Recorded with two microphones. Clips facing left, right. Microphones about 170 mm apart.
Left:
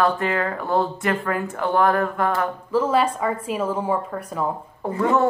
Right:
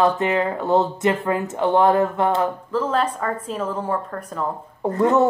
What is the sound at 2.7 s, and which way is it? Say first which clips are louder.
A woman's voice: left 4 dB; 10° left (ahead or behind).